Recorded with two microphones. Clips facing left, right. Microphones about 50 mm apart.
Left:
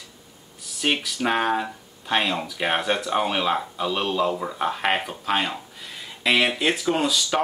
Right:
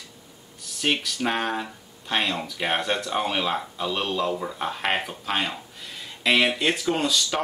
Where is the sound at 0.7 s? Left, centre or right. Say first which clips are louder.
Left 1 dB; centre.